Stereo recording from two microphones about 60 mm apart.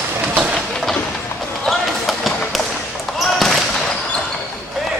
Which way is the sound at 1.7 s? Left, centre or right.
Centre.